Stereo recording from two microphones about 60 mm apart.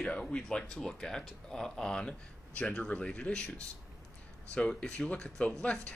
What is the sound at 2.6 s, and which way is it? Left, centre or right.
Speech, left.